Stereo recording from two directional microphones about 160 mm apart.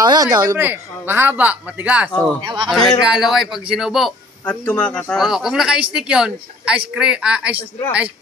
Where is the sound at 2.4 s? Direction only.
30° right (ahead or behind).